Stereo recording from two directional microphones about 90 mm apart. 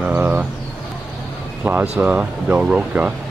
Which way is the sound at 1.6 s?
15° right (ahead or behind).